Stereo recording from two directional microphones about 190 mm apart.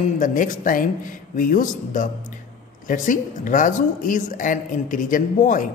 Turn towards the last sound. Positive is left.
turn(degrees=45)  # may be behind; listen again after turning